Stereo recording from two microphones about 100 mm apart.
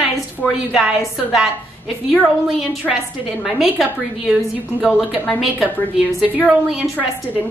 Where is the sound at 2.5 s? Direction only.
Centre (ahead or behind).